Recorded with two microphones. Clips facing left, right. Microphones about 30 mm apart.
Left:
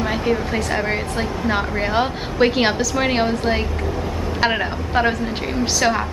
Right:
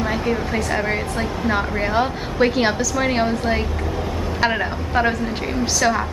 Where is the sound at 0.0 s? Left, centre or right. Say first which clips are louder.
Left 1 dB; centre.